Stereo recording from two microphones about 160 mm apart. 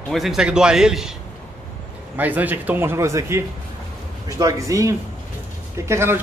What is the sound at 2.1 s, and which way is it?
A man's voice, 10° right (ahead or behind).